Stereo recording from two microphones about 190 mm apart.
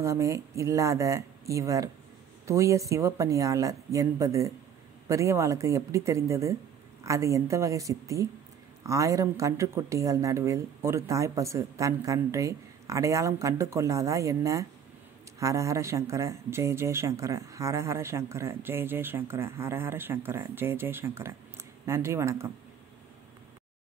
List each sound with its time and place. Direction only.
0.0 s speech: 15° right (ahead or behind)